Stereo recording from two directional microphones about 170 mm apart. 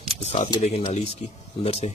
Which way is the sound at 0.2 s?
40° left (ahead or behind).